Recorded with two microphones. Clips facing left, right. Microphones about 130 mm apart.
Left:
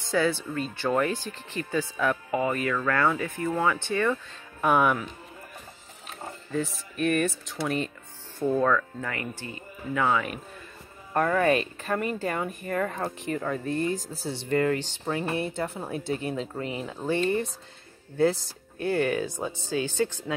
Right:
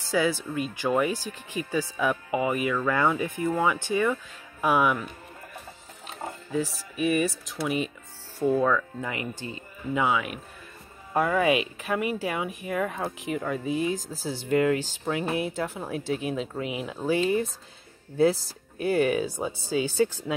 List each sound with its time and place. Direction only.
0.1 s speech: 10° right (ahead or behind)
6.5 s speech: 5° right (ahead or behind)
9.1 s speech: 20° right (ahead or behind)
10.0 s speech: 5° right (ahead or behind)